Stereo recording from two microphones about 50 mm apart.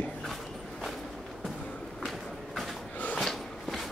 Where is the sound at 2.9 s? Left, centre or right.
Left.